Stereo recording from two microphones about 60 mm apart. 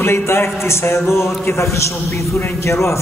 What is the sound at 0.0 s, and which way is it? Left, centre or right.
A man's voice, left.